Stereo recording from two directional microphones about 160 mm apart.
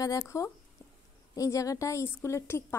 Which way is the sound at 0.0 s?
20° left (ahead or behind).